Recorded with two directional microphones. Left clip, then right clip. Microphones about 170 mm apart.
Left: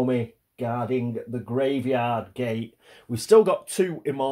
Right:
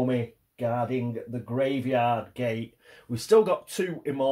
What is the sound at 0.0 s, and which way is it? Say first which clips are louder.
Speech: left 3 dB; 40° left (ahead or behind).